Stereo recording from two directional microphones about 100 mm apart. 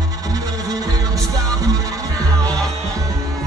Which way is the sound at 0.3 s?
35° right (ahead or behind).